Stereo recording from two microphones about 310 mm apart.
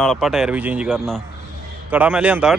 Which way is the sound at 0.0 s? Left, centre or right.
Centre.